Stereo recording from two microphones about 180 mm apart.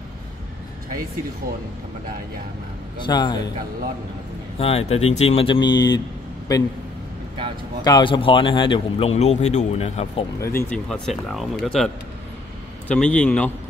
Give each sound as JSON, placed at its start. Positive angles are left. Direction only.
{"t": 3.1, "sound": "a man's voice", "side_deg": 25}
{"t": 4.6, "sound": "a man's voice", "side_deg": 35}
{"t": 7.8, "sound": "speech", "side_deg": 25}
{"t": 10.4, "sound": "a man's voice", "side_deg": 15}
{"t": 10.9, "sound": "a man's voice", "side_deg": 0}